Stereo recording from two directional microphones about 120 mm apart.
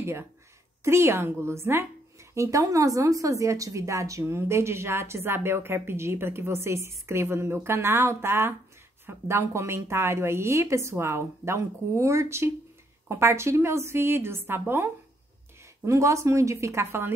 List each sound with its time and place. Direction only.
0.0 s a woman's voice: 20° right (ahead or behind)